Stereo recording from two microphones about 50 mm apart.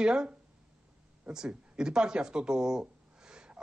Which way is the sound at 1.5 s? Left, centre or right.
Centre.